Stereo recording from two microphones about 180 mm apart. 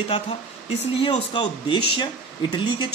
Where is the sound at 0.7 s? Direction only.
30° left (ahead or behind).